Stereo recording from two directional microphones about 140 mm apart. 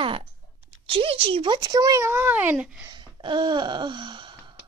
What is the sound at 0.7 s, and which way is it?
Speech, 40° right (ahead or behind).